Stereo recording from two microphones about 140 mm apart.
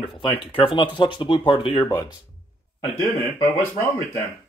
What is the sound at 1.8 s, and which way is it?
Speech, 20° left (ahead or behind).